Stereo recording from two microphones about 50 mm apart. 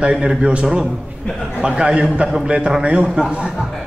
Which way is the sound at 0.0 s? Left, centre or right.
Right.